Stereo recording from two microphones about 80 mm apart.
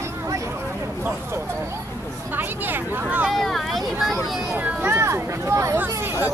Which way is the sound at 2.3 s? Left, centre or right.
Right.